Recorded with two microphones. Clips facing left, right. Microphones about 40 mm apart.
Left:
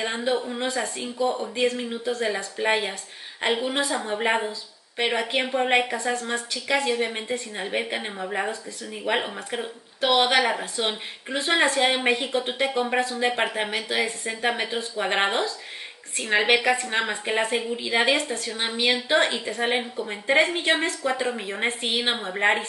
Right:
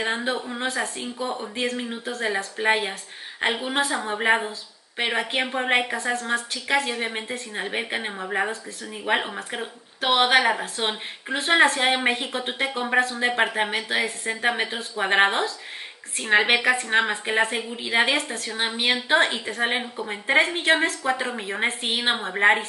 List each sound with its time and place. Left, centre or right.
0.0 s a woman's voice: centre
1.2 s speech: right
1.5 s a woman's voice: centre
13.2 s a woman's voice: centre